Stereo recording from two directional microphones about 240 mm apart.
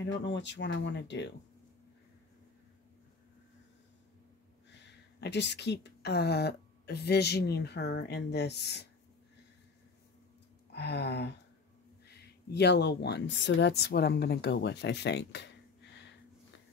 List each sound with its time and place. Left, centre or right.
0.0 s a woman's voice: left
5.2 s a woman's voice: left
10.7 s a woman's voice: left